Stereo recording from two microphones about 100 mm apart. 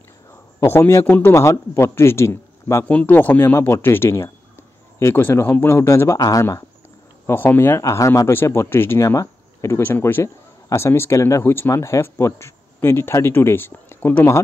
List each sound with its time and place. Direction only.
0.3 s a man's voice: 25° left (ahead or behind)
2.8 s speech: 15° left (ahead or behind); by 6.4 s 35° left (ahead or behind)
7.2 s speech: 20° left (ahead or behind)